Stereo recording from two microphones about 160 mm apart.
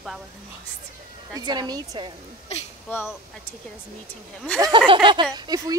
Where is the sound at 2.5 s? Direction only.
40° left (ahead or behind).